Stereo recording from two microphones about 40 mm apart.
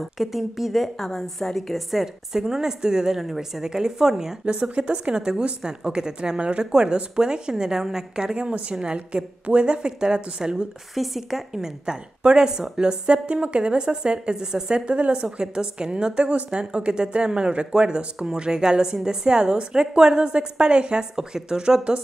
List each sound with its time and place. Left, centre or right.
0.0 s a woman's voice: centre
0.9 s a woman's voice: centre
2.3 s a woman's voice: centre
4.5 s a woman's voice: right
8.4 s a woman's voice: right
11.0 s a woman's voice: centre; by 15.2 s right
15.3 s a woman's voice: centre